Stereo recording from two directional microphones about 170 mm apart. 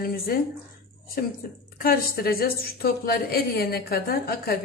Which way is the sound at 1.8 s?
60° left (ahead or behind).